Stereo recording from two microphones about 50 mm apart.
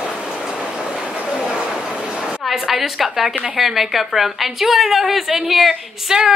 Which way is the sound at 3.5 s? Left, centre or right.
Centre.